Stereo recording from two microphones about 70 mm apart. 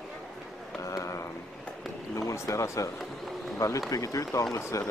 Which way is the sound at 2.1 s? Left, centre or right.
Left.